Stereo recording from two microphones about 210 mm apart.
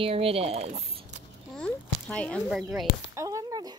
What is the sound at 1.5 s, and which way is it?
Speech, 5° left (ahead or behind).